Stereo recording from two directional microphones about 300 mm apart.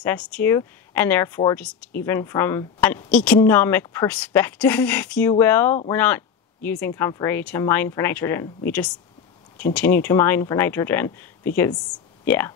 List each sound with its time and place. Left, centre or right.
0.0 s a woman's voice: centre